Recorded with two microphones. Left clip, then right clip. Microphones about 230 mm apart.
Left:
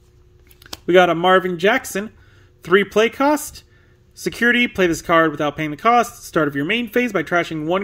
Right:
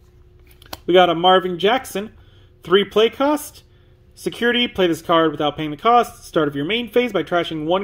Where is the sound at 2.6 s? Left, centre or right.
Left.